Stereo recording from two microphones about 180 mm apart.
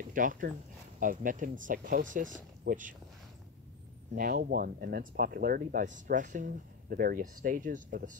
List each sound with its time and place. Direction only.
0.1 s speech: 50° right (ahead or behind)
4.1 s speech: 55° right (ahead or behind)